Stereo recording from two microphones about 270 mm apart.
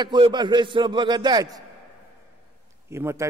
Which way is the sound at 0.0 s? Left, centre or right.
Centre.